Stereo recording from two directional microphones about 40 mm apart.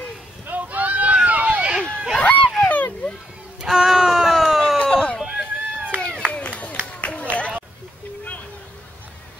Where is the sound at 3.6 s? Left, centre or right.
Centre.